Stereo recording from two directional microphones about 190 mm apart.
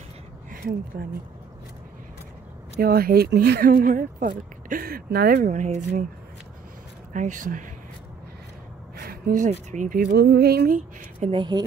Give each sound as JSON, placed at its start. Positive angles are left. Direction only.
{"t": 0.5, "sound": "speech", "side_deg": -45}
{"t": 2.8, "sound": "speech", "side_deg": -50}
{"t": 7.1, "sound": "speech", "side_deg": -40}
{"t": 8.9, "sound": "speech", "side_deg": -50}
{"t": 11.1, "sound": "speech", "side_deg": -30}